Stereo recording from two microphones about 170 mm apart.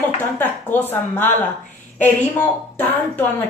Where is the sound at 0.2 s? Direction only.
10° left (ahead or behind).